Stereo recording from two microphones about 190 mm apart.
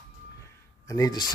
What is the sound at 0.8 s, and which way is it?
Speech, 20° left (ahead or behind).